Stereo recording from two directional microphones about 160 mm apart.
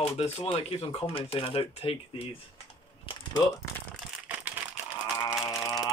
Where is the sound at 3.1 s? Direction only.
35° left (ahead or behind).